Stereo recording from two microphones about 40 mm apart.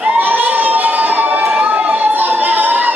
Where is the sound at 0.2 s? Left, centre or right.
Right.